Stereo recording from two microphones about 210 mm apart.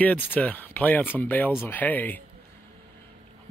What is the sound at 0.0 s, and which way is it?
Speech, 5° left (ahead or behind).